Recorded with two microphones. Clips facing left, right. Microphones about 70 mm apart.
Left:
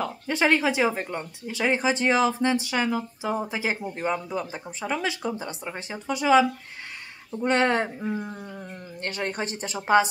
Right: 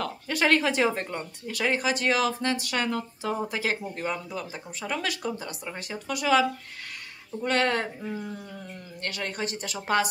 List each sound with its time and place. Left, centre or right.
0.3 s speech: centre
9.8 s speech: centre